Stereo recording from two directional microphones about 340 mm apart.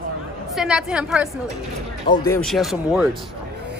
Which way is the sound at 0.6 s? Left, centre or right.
Centre.